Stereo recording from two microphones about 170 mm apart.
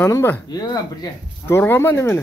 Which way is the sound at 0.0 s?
15° left (ahead or behind).